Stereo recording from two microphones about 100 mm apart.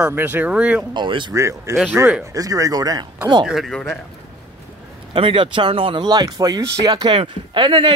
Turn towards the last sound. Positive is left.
turn(degrees=-55)  # may be behind; listen again after turning